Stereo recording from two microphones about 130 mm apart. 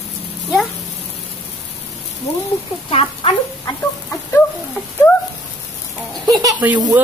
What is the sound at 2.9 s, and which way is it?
Speech, 45° left (ahead or behind).